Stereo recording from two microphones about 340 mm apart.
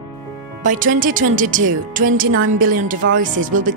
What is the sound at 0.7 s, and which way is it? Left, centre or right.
Speech, right.